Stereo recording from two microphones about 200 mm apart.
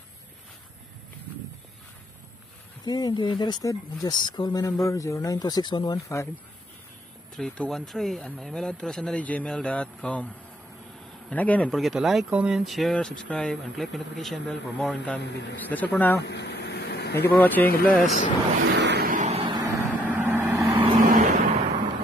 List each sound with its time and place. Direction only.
2.8 s speech: 20° left (ahead or behind)
7.3 s speech: 5° left (ahead or behind)
16.2 s vehicle: 60° left (ahead or behind)
17.3 s speech: 10° left (ahead or behind)
18.7 s vehicle: 60° right (ahead or behind); by 19.4 s 35° right (ahead or behind)
19.5 s vehicle: 15° right (ahead or behind)
20.6 s vehicle: 25° right (ahead or behind)
20.9 s vehicle: 45° right (ahead or behind)